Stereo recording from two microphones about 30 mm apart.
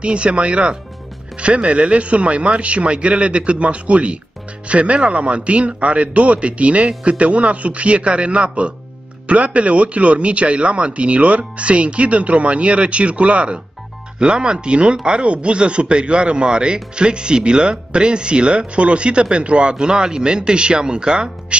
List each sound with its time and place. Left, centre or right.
0.0 s speech: right
14.2 s speech: right
19.7 s speech: right